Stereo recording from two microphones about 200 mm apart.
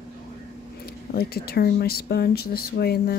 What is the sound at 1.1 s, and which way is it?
Speech, 50° left (ahead or behind).